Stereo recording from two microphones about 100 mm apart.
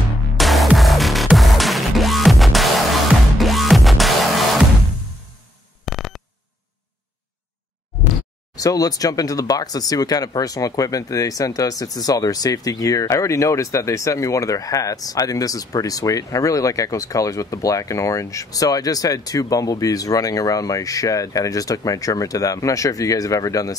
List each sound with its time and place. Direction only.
0.4 s music: centre (ahead or behind)
5.9 s a sound: centre (ahead or behind)
8.5 s speech: 35° left (ahead or behind)